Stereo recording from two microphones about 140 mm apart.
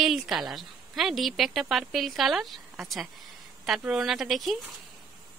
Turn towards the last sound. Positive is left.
turn(degrees=0)  # may be behind; listen again after turning